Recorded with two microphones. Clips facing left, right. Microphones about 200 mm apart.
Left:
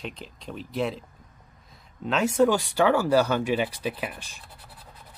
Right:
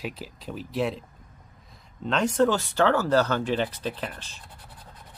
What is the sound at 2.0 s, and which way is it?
Rub, 5° left (ahead or behind).